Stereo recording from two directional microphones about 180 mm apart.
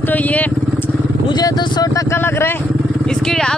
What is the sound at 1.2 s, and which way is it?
Vehicle, 25° left (ahead or behind).